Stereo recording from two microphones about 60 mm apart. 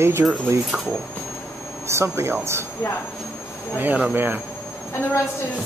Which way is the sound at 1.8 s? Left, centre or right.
Right.